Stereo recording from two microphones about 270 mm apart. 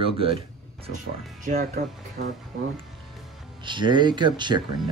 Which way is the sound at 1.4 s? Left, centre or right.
Right.